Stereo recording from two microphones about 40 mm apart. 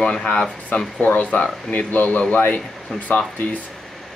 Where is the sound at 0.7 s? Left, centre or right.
Left.